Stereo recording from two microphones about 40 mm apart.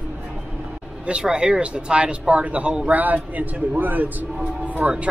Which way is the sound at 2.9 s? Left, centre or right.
Right.